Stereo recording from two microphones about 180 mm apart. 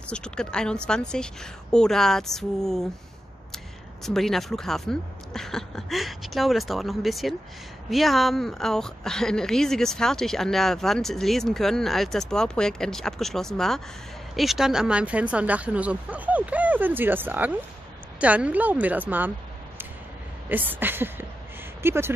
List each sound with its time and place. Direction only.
0.1 s a woman's voice: 5° left (ahead or behind)
20.4 s speech: 10° right (ahead or behind)